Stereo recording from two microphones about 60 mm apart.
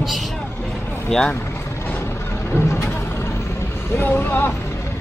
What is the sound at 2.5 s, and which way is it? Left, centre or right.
Vehicle, left.